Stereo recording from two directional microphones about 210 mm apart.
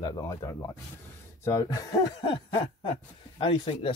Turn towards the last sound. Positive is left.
turn(degrees=25)  # may be behind; listen again after turning